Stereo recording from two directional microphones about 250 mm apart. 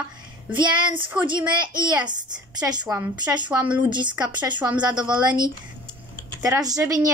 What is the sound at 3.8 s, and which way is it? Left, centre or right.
Speech, centre.